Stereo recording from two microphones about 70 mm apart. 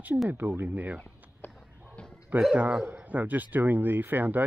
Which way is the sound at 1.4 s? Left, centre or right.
Left.